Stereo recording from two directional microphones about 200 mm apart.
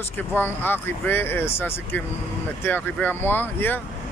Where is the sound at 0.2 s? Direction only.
10° left (ahead or behind).